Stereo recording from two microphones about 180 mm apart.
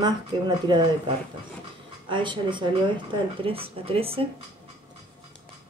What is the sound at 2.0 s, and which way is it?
Speech, 25° right (ahead or behind).